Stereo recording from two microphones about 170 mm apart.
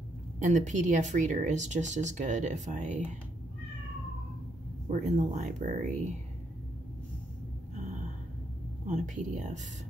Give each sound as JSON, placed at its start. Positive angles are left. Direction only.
{"t": 0.4, "sound": "speech", "side_deg": -45}
{"t": 4.8, "sound": "speech", "side_deg": -45}
{"t": 7.7, "sound": "a sound", "side_deg": -45}
{"t": 8.8, "sound": "speech", "side_deg": -45}